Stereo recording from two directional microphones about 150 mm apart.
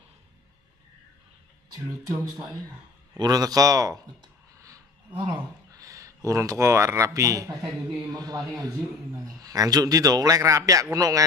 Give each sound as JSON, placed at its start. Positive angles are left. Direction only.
{"t": 2.0, "sound": "a man's voice", "side_deg": -20}
{"t": 5.1, "sound": "a man's voice", "side_deg": -30}